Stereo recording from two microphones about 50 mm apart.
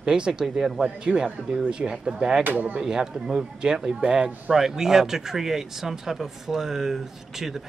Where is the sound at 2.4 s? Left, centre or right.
Right.